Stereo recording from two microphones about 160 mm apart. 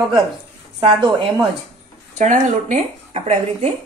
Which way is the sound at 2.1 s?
50° right (ahead or behind).